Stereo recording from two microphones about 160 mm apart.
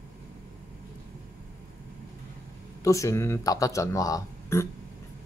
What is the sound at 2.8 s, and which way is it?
Speech, 20° left (ahead or behind).